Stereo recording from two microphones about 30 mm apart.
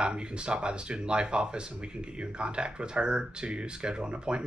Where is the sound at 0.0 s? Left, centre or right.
Right.